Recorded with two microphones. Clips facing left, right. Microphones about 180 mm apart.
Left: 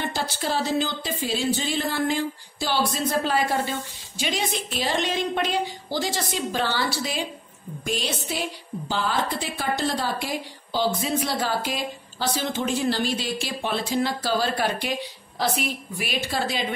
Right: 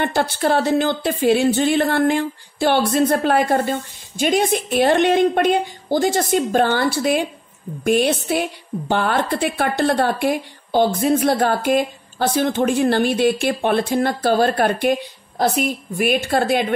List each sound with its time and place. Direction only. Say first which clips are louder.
0.0 s a woman's voice: right 9 dB; 60° right (ahead or behind)